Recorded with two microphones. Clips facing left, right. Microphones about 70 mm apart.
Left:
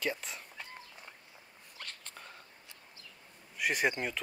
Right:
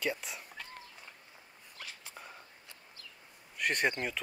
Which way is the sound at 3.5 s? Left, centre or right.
Centre.